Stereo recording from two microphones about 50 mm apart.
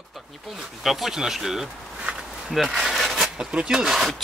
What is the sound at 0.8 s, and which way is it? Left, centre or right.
Speech, centre.